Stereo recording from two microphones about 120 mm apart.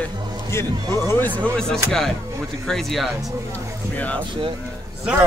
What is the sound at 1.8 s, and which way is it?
A man's voice, 5° left (ahead or behind).